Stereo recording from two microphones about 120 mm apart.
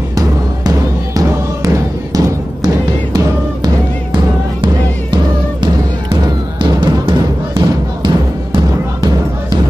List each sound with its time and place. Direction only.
0.1 s music: 30° right (ahead or behind)
6.6 s music: 40° right (ahead or behind)